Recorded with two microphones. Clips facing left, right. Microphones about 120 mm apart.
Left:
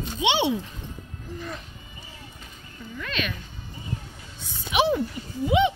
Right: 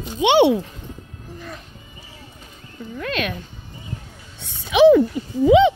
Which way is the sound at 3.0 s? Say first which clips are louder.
Right 6 dB; 55° right (ahead or behind).